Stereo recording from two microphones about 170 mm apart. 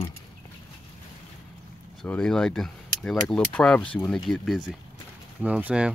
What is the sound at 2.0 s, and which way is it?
Speech, 5° left (ahead or behind).